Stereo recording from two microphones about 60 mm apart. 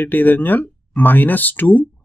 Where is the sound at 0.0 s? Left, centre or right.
Left.